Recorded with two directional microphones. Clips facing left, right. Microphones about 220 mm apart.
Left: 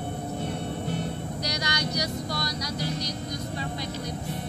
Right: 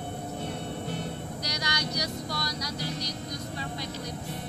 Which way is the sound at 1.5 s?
20° left (ahead or behind).